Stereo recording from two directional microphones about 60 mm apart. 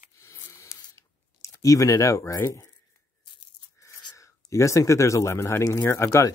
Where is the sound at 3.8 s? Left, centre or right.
Left.